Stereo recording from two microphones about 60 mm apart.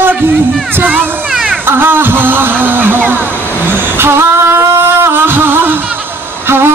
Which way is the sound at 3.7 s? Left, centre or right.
Right.